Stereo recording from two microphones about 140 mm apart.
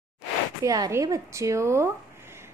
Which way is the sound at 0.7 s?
25° right (ahead or behind).